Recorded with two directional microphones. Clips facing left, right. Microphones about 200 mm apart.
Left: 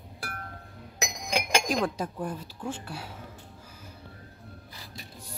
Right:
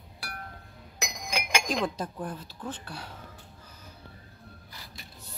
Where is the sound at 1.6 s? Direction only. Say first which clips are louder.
Left 2 dB; 10° left (ahead or behind).